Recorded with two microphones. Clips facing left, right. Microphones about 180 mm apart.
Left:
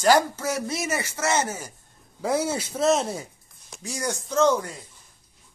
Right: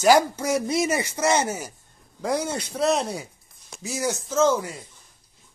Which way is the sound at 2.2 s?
5° left (ahead or behind).